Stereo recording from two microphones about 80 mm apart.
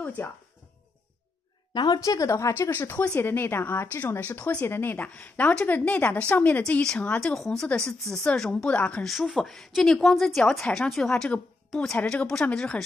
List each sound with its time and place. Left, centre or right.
0.0 s speech: centre
1.9 s speech: left
2.7 s speech: left
4.6 s speech: left
4.9 s speech: centre
6.6 s speech: centre
9.0 s a woman's voice: centre